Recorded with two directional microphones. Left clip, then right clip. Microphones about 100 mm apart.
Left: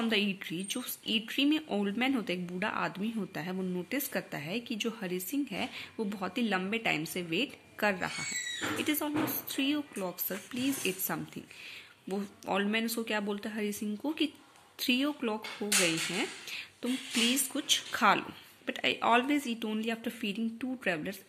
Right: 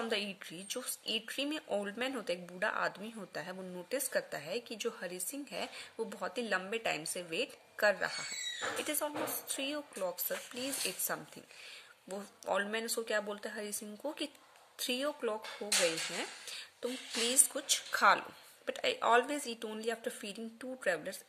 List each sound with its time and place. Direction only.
0.0 s a woman's voice: 30° right (ahead or behind)